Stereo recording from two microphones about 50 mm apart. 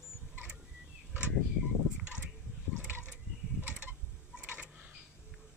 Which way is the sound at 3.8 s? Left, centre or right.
Right.